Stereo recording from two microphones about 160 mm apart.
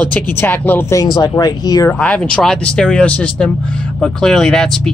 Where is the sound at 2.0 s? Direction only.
5° left (ahead or behind).